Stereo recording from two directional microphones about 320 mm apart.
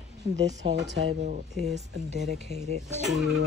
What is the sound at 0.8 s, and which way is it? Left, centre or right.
Speech, right.